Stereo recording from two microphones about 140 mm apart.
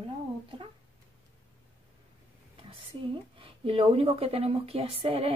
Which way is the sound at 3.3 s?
40° right (ahead or behind).